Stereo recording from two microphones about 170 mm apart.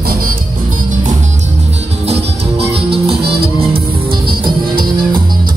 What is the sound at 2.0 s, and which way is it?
Music, 35° right (ahead or behind).